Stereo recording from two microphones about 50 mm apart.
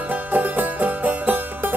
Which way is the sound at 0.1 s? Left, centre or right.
Right.